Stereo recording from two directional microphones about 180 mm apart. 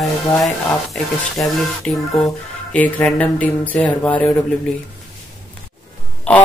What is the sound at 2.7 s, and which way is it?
Speech, 10° left (ahead or behind).